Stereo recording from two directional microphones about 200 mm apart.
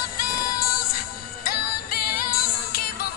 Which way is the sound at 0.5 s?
50° left (ahead or behind).